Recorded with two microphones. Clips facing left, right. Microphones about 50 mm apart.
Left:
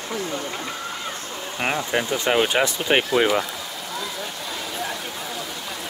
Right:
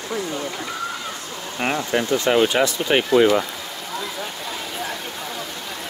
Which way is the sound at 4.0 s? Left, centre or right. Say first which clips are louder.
Right 2 dB; centre.